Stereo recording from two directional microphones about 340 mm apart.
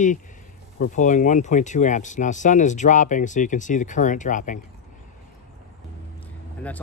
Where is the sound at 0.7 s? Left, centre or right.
Left.